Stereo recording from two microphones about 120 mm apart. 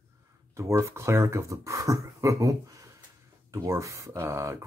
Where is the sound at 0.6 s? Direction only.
25° right (ahead or behind).